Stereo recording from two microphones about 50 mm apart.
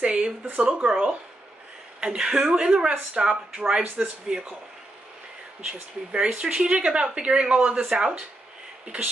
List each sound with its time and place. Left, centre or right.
0.0 s speech: centre
5.6 s speech: centre